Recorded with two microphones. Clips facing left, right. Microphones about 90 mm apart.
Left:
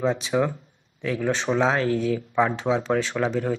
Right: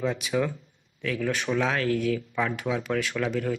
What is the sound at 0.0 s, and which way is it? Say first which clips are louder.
Speech: left 4 dB; 30° left (ahead or behind).